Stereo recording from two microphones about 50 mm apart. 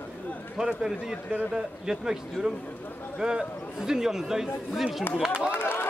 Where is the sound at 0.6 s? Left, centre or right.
Centre.